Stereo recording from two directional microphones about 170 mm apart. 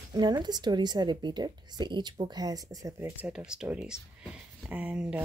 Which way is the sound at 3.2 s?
5° right (ahead or behind).